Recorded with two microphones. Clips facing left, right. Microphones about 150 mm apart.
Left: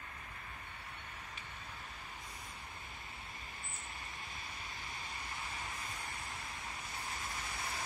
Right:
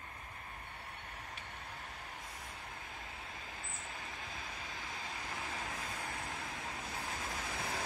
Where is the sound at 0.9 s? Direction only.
55° right (ahead or behind).